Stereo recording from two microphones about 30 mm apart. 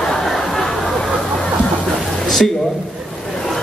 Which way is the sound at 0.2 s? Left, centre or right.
Centre.